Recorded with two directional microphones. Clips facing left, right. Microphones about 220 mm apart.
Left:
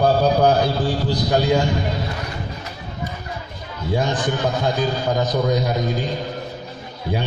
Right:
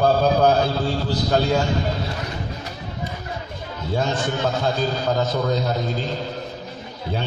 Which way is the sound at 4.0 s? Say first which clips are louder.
Left 1 dB; 15° left (ahead or behind).